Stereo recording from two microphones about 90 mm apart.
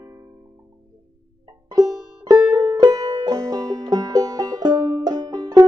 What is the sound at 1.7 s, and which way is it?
Music, 45° right (ahead or behind).